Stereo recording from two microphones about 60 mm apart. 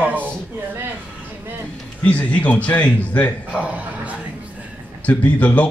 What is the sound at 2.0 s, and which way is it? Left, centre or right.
A man's voice, left.